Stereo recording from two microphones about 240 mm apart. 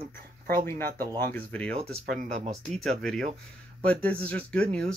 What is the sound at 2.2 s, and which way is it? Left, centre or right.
Speech, right.